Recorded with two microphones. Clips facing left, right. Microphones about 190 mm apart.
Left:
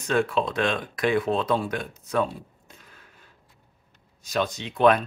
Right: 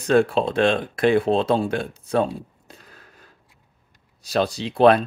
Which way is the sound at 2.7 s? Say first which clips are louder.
Right 5 dB; 35° right (ahead or behind).